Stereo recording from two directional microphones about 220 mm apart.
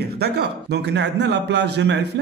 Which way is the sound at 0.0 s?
45° right (ahead or behind).